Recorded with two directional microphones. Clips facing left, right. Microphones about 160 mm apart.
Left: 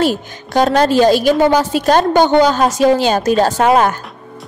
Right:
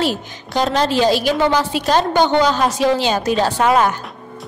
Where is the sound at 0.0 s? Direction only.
50° left (ahead or behind).